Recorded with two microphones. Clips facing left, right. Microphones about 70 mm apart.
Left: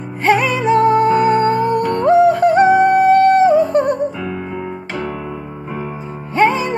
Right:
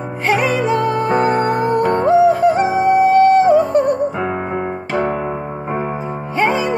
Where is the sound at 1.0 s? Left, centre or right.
Right.